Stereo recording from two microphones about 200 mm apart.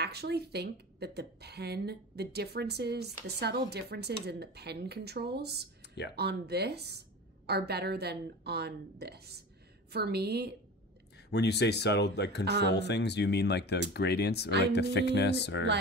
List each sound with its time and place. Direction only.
0.0 s a woman's voice: 55° right (ahead or behind)
5.8 s a sound: 55° left (ahead or behind)
6.1 s a woman's voice: 55° right (ahead or behind)
11.1 s speech: 55° left (ahead or behind)